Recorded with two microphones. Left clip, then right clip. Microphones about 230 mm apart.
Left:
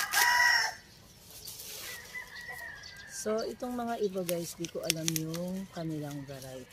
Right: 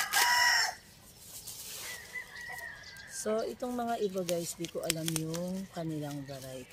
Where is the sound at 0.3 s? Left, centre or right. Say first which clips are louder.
Left 2 dB; right.